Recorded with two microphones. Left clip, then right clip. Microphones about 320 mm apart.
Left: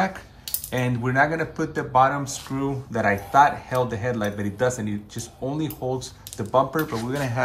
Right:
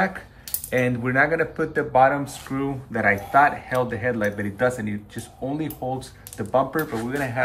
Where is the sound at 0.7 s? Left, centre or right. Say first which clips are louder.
Right 4 dB; centre.